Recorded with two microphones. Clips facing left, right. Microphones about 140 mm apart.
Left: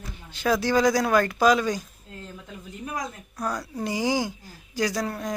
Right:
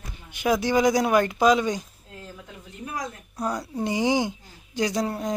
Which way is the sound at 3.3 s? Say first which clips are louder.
Right 2 dB; 20° right (ahead or behind).